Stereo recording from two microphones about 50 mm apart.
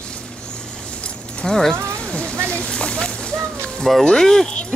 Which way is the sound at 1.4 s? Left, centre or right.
Centre.